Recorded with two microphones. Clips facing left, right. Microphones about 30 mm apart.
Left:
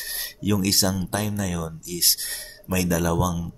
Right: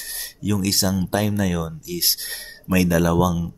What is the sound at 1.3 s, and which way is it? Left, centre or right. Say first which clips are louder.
Speech: right 5 dB; centre.